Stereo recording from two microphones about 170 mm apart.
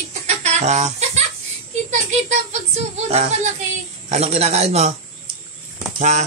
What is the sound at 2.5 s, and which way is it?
Music, 40° right (ahead or behind).